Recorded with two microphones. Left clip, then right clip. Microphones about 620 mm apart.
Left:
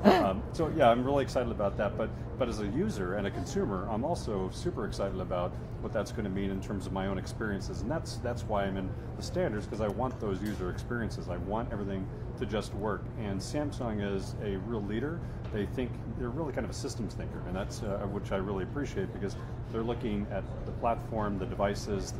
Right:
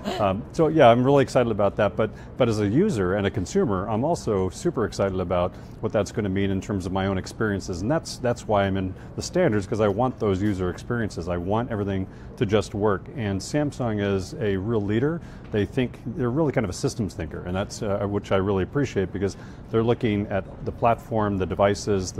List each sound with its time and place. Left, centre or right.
0.3 s speech: right